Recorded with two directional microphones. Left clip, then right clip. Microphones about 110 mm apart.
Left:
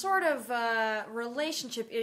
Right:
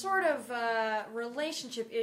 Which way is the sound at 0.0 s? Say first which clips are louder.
Left 1 dB; 35° left (ahead or behind).